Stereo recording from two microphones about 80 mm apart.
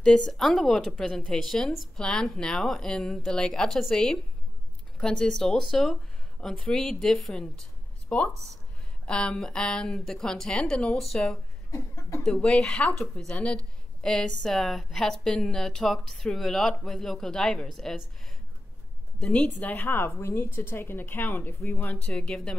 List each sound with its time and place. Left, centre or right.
0.0 s a woman's voice: centre
8.1 s speech: centre
11.7 s a sound: left
12.2 s a woman's voice: centre
19.6 s a woman's voice: left
21.9 s speech: centre